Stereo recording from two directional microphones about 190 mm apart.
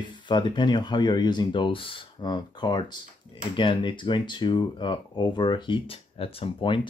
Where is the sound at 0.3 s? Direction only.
25° left (ahead or behind).